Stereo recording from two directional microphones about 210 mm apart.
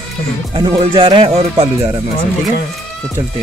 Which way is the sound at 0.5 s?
25° right (ahead or behind).